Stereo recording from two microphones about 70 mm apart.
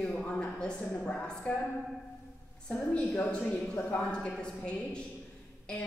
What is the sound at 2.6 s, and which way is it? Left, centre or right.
A woman's voice, centre.